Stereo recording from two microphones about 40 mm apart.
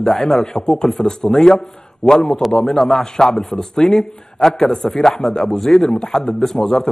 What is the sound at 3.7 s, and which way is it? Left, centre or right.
A man's voice, centre.